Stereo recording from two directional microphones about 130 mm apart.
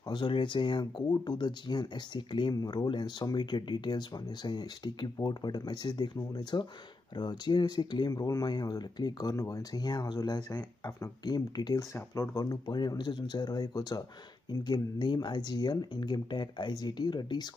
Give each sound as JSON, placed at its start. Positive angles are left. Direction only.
{"t": 0.1, "sound": "speech", "side_deg": 40}